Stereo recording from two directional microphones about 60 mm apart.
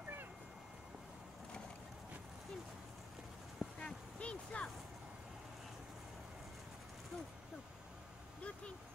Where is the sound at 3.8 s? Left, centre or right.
Left.